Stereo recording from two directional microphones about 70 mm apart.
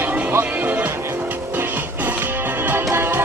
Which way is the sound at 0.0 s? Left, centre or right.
Right.